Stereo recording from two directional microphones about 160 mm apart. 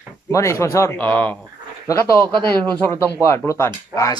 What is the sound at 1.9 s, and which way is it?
Speech, 20° left (ahead or behind).